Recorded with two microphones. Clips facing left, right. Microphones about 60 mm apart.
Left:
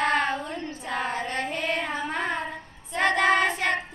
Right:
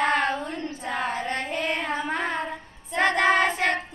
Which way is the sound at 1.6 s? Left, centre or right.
Centre.